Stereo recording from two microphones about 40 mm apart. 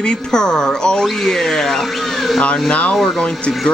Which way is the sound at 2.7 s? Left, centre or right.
Left.